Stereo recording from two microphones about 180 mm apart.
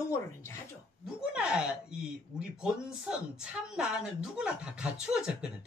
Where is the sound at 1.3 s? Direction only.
5° right (ahead or behind).